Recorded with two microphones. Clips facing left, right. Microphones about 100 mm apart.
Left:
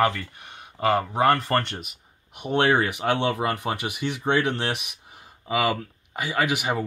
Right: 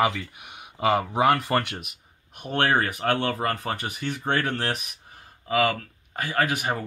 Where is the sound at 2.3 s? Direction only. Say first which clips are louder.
Left 2 dB; 15° left (ahead or behind).